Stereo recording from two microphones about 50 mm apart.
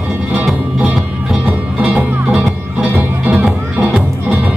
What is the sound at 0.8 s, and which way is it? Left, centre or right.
Music, right.